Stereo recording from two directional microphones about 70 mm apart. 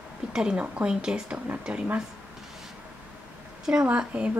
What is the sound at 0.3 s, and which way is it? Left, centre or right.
Speech, centre.